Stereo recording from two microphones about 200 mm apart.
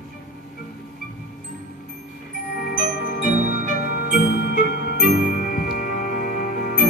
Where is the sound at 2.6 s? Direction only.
45° left (ahead or behind).